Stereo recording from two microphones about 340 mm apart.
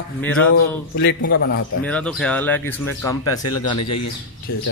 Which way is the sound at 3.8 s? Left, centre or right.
Left.